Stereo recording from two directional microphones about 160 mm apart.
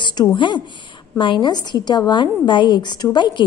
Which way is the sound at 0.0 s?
25° left (ahead or behind).